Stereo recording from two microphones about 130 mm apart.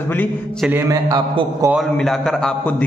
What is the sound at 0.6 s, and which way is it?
Speech, 20° right (ahead or behind).